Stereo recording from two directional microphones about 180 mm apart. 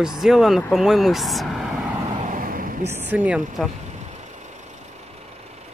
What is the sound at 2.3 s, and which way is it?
Vehicle, 50° right (ahead or behind).